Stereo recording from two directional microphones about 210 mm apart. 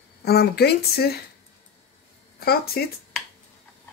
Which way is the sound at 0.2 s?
50° left (ahead or behind).